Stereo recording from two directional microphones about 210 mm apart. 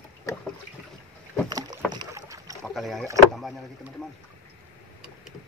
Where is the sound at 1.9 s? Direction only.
15° right (ahead or behind).